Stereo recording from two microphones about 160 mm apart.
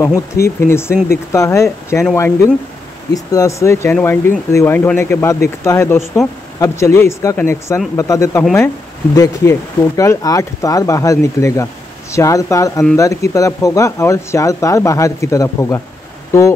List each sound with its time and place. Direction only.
0.0 s speech: 20° left (ahead or behind)
3.1 s speech: 20° left (ahead or behind)